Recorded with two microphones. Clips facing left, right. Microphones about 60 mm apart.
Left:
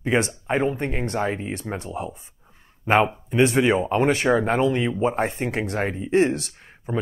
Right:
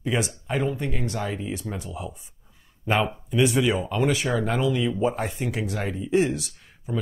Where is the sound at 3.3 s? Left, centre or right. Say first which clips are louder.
Left 3 dB; left.